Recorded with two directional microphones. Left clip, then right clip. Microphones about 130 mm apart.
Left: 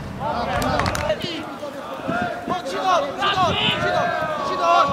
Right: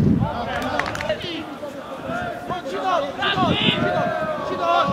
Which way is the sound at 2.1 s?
35° left (ahead or behind).